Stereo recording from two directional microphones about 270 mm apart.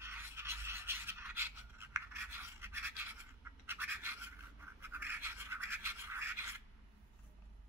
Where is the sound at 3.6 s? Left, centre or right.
Centre.